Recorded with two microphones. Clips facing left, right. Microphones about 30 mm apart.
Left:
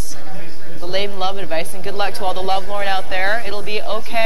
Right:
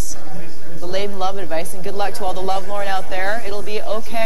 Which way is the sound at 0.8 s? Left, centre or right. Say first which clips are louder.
Left 1 dB; left.